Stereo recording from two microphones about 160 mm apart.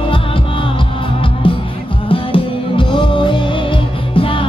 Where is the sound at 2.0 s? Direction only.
35° left (ahead or behind).